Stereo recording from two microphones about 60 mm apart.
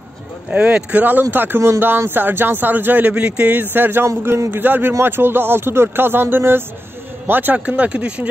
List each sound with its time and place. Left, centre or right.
0.5 s speech: right
3.1 s speech: right
3.7 s speech: right
7.6 s speech: right